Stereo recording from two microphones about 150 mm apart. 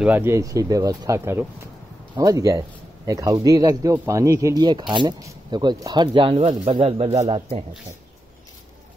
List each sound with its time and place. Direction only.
0.0 s a man's voice: 15° right (ahead or behind); by 7.6 s 40° right (ahead or behind)